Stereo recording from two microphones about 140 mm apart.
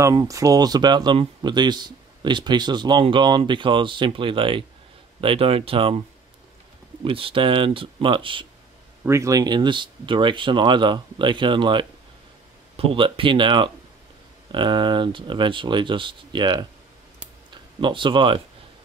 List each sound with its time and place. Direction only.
0.0 s speech: 25° right (ahead or behind); by 5.9 s 40° right (ahead or behind)
7.1 s speech: 40° right (ahead or behind)
9.0 s speech: 20° right (ahead or behind)
17.7 s speech: 35° right (ahead or behind)